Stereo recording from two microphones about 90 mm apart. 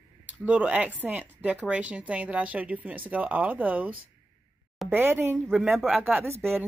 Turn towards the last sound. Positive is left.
turn(degrees=0)  # may be behind; listen again after turning